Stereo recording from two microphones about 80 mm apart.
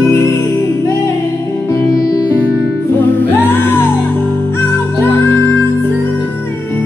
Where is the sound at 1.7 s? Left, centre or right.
Left.